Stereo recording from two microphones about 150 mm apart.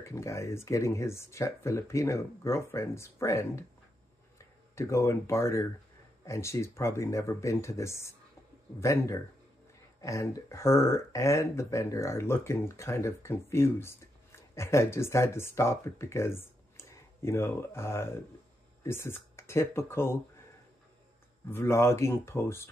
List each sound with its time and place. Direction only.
0.0 s speech: 20° left (ahead or behind)
21.5 s speech: 15° left (ahead or behind)